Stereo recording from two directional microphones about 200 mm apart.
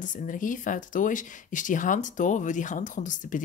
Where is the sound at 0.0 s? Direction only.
40° left (ahead or behind).